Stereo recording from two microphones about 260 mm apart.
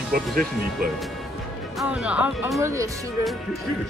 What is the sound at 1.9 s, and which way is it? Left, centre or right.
Speech, centre.